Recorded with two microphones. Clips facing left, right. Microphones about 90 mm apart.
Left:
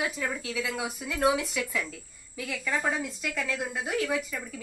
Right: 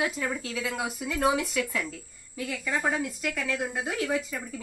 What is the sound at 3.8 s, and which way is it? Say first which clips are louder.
Speech: left 2 dB; 20° right (ahead or behind).